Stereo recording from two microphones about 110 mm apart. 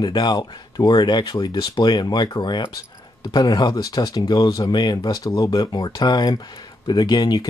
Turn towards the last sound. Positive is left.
turn(degrees=40)  # may be behind; listen again after turning